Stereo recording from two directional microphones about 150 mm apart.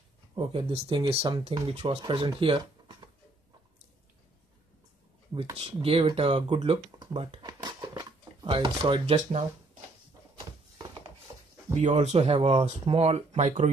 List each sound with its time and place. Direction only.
0.5 s speech: 35° right (ahead or behind)
5.3 s speech: 40° right (ahead or behind)
7.4 s a sound: 25° right (ahead or behind)
11.7 s speech: 50° right (ahead or behind)